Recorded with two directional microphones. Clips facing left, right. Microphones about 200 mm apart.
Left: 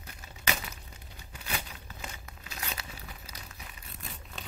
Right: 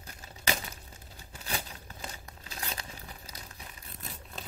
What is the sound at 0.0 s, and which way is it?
Crumpling, 35° right (ahead or behind).